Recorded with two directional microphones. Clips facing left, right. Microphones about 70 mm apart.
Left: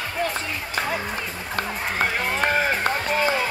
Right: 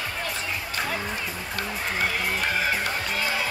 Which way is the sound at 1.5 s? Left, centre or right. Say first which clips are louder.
Left 4 dB; left.